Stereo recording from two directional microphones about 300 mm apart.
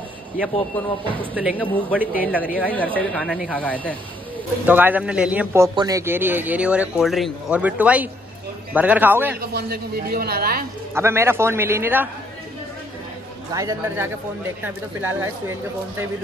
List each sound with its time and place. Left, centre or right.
1.3 s a man's voice: centre
2.6 s a man's voice: centre
4.6 s a man's voice: centre
9.5 s speech: right
11.0 s a man's voice: centre
13.5 s a man's voice: centre